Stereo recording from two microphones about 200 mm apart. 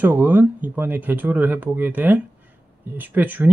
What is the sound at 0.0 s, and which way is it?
Speech, 10° right (ahead or behind).